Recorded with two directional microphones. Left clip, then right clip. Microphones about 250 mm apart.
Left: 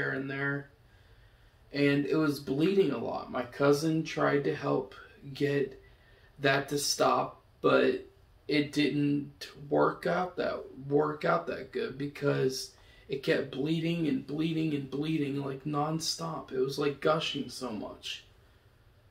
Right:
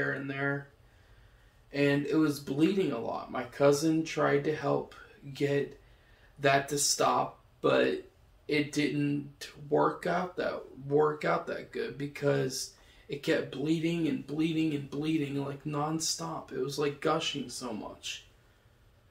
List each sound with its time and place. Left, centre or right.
0.3 s speech: centre
1.7 s speech: centre
8.5 s speech: centre